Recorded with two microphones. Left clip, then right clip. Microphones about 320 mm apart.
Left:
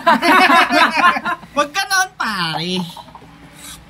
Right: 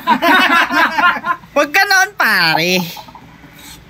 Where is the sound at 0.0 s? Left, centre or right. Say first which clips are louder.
Even; centre.